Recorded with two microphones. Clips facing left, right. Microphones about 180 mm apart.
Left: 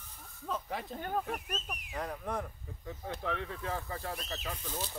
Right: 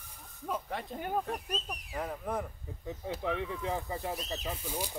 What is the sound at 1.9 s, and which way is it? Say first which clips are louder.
Speech: right 2 dB; 5° right (ahead or behind).